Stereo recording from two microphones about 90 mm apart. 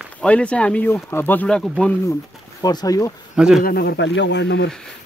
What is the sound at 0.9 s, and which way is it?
Speech, 25° left (ahead or behind).